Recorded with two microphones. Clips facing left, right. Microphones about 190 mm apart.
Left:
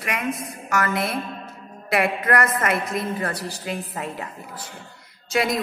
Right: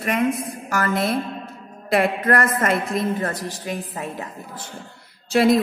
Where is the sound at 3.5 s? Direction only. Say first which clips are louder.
Right 1 dB; 15° right (ahead or behind).